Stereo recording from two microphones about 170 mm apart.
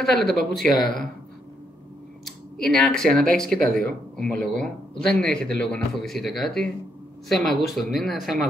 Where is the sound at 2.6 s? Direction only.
5° left (ahead or behind).